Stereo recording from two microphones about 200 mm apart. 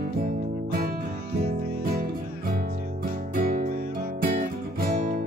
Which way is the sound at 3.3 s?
45° right (ahead or behind).